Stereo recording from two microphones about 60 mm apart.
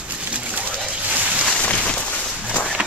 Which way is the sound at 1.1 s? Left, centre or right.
Right.